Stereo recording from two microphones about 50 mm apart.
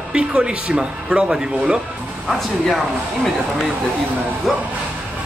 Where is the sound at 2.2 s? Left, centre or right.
Centre.